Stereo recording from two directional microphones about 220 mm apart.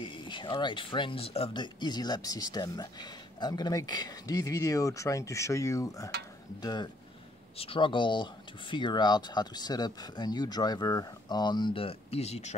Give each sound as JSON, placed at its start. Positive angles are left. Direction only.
{"t": 0.0, "sound": "speech", "side_deg": 20}